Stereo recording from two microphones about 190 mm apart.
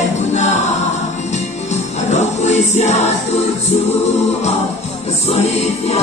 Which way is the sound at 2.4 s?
35° left (ahead or behind).